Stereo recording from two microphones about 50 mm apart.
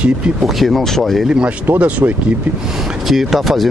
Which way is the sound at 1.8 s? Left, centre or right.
Right.